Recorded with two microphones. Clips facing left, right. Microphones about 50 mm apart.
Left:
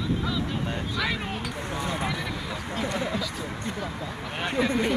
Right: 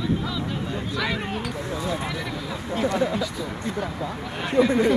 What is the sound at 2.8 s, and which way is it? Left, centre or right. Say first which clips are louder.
Speech: right 7 dB; right.